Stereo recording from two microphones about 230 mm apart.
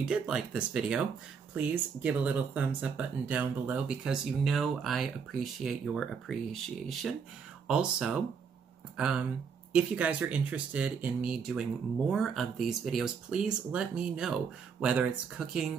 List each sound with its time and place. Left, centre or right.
0.0 s speech: centre